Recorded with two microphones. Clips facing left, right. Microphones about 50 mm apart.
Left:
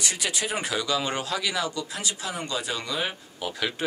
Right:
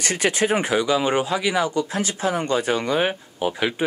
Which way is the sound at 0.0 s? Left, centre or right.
Right.